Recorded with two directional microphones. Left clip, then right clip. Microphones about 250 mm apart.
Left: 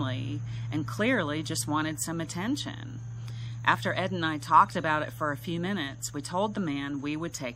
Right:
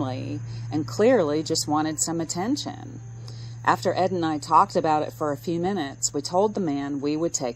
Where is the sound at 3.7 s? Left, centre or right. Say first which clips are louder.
Right 5 dB; centre.